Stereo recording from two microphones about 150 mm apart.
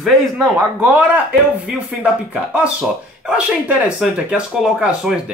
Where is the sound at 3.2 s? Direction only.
5° right (ahead or behind).